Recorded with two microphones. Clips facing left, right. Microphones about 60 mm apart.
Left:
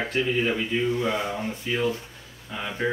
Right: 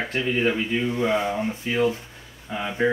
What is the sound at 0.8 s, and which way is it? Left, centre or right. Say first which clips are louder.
Speech: right 2 dB; right.